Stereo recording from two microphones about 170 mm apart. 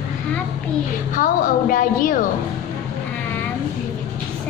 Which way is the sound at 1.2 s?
50° left (ahead or behind).